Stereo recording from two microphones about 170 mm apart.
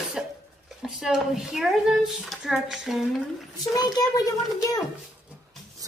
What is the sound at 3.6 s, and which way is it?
A child's voice, 20° left (ahead or behind).